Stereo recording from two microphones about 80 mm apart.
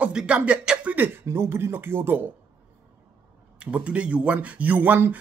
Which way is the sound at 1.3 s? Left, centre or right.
Right.